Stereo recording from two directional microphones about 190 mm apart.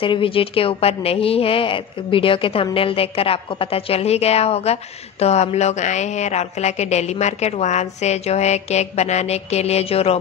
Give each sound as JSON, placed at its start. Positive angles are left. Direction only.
{"t": 0.0, "sound": "a woman's voice", "side_deg": 30}